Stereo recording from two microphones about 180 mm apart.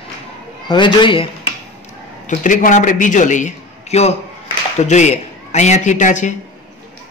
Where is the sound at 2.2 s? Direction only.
45° left (ahead or behind).